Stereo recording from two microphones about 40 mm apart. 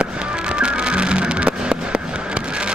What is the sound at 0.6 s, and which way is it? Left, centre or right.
Music, right.